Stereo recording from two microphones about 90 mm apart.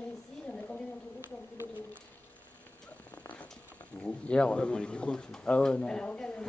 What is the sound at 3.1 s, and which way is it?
Cat, 15° left (ahead or behind).